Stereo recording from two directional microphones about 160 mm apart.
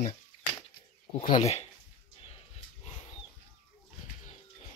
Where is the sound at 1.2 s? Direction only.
45° left (ahead or behind).